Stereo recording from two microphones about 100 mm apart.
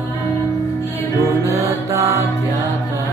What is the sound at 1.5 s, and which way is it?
Mantra, 30° right (ahead or behind).